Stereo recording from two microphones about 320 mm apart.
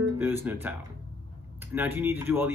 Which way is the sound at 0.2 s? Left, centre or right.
Centre.